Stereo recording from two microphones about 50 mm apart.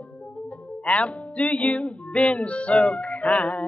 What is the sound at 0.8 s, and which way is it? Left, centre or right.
Music, left.